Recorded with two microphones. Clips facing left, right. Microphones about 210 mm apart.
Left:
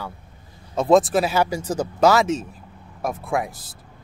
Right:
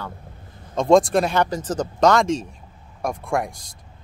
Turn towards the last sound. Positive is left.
turn(degrees=5)  # may be behind; listen again after turning